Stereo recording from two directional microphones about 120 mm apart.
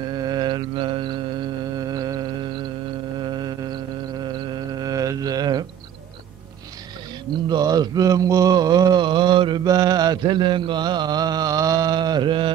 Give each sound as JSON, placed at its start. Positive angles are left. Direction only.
{"t": 0.1, "sound": "mantra", "side_deg": -35}
{"t": 3.2, "sound": "music", "side_deg": -35}
{"t": 7.4, "sound": "mantra", "side_deg": -35}